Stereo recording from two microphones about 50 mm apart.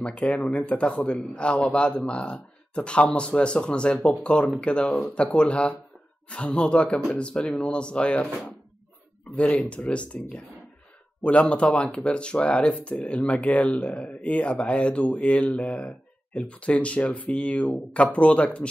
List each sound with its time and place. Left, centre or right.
0.0 s speech: left
9.3 s speech: left